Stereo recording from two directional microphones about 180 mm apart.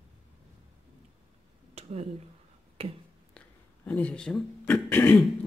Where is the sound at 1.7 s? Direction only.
35° right (ahead or behind).